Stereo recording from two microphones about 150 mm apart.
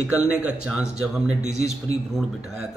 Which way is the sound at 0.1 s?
10° right (ahead or behind).